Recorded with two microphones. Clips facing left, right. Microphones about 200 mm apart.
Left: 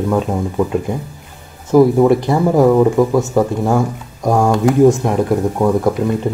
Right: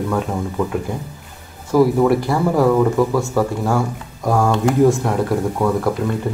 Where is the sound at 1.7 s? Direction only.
20° left (ahead or behind).